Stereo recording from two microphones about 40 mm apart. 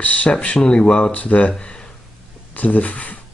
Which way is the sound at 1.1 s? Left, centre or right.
Left.